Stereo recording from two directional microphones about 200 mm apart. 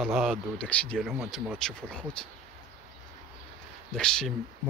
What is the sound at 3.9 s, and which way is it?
Speech, 5° left (ahead or behind).